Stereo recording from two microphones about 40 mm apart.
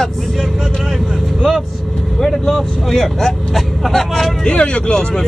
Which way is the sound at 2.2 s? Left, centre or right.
Centre.